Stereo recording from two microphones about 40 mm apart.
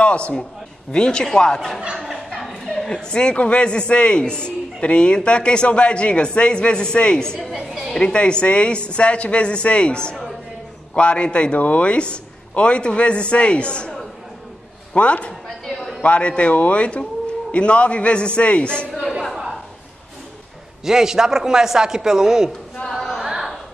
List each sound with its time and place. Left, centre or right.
0.0 s a man's voice: left
2.0 s chuckle: centre
2.7 s a man's voice: centre
11.5 s a man's voice: left
15.0 s a man's voice: left
15.4 s a sound: centre
16.0 s a man's voice: left
20.8 s a man's voice: centre
22.8 s a sound: centre
23.2 s music: centre